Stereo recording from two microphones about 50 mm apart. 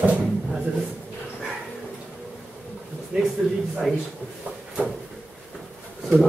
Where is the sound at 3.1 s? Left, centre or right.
Centre.